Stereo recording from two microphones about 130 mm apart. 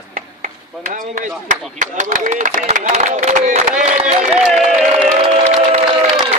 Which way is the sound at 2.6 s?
70° right (ahead or behind).